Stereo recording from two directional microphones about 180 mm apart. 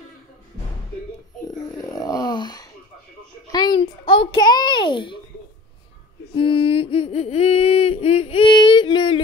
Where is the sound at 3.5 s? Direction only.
25° left (ahead or behind).